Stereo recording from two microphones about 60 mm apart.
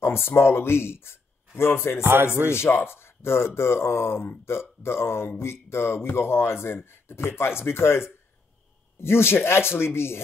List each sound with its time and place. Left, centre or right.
0.0 s speech: left
9.0 s speech: left